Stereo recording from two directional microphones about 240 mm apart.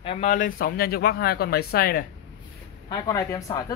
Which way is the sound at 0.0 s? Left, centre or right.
Left.